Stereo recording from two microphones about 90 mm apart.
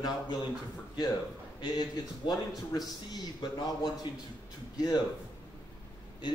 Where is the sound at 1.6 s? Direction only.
50° left (ahead or behind).